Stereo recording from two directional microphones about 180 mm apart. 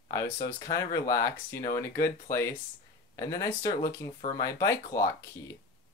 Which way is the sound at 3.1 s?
20° left (ahead or behind).